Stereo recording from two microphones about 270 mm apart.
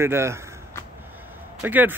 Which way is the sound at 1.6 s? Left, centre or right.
Centre.